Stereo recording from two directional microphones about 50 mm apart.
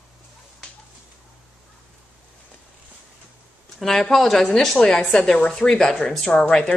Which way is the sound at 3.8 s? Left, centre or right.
Centre.